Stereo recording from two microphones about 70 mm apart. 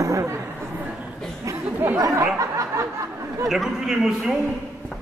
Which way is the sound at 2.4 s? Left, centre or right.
Right.